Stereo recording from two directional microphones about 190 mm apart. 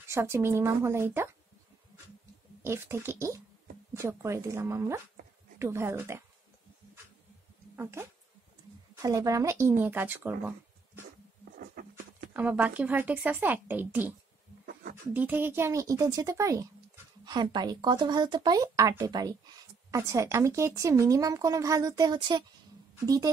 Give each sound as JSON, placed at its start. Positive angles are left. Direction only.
{"t": 0.1, "sound": "speech", "side_deg": -15}
{"t": 2.6, "sound": "speech", "side_deg": -15}
{"t": 7.7, "sound": "speech", "side_deg": -10}
{"t": 11.9, "sound": "speech", "side_deg": -10}
{"t": 14.7, "sound": "a sound", "side_deg": -55}
{"t": 15.1, "sound": "a woman's voice", "side_deg": -10}